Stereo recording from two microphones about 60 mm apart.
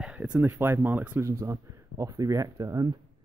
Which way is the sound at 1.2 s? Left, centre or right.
Right.